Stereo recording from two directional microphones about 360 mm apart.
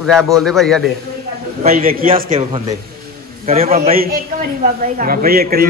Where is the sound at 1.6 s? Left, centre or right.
Right.